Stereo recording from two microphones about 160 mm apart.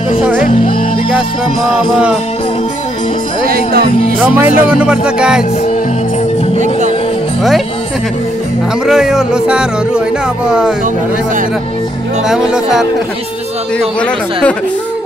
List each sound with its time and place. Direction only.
0.2 s music: 5° right (ahead or behind)
3.4 s speech: 75° right (ahead or behind)
4.2 s speech: 10° right (ahead or behind)
8.8 s speech: 5° right (ahead or behind)
12.3 s speech: 5° right (ahead or behind)